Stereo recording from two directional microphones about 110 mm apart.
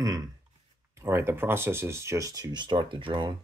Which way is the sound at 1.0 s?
20° right (ahead or behind).